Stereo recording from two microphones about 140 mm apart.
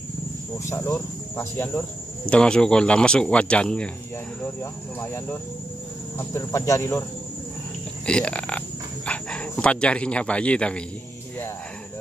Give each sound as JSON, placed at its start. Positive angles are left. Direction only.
{"t": 0.7, "sound": "speech", "side_deg": 15}
{"t": 2.2, "sound": "speech", "side_deg": 5}
{"t": 5.0, "sound": "speech", "side_deg": 20}
{"t": 8.1, "sound": "speech", "side_deg": 5}